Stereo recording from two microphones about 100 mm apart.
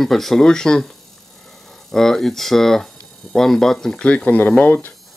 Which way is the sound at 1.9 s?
5° left (ahead or behind).